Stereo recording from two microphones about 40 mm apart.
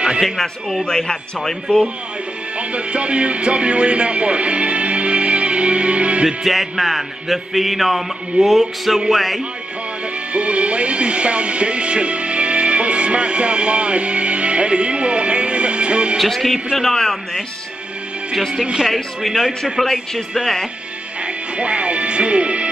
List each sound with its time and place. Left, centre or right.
0.2 s speech: centre
2.7 s speech: right
6.2 s music: centre
10.3 s music: right
16.2 s music: centre
19.2 s music: centre
21.2 s speech: right